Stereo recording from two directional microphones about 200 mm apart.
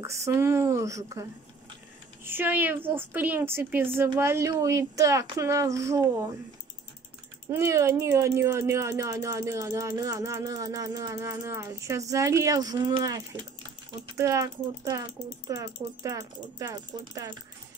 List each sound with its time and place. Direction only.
0.0 s speech: 15° right (ahead or behind)
2.2 s speech: 10° right (ahead or behind)
7.5 s speech: 15° right (ahead or behind)